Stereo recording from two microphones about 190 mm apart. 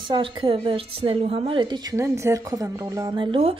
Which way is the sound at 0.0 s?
25° right (ahead or behind).